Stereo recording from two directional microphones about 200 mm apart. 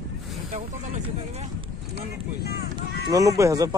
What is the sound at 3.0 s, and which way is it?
Speech, 15° right (ahead or behind).